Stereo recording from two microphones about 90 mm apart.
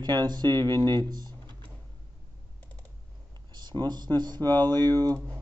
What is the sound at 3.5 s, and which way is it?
Speech, 50° right (ahead or behind).